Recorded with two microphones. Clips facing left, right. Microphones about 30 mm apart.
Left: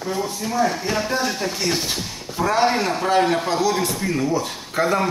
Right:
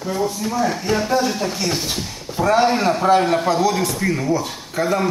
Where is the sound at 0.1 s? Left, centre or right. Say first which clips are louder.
Right 3 dB; centre.